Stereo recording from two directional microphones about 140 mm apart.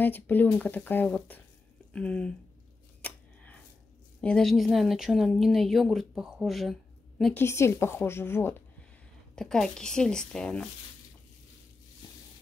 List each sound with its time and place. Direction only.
0.0 s speech: 15° left (ahead or behind)
3.0 s a sound: 10° left (ahead or behind)
4.2 s speech: 5° left (ahead or behind)
7.3 s speech: 20° left (ahead or behind)
9.3 s speech: 5° left (ahead or behind)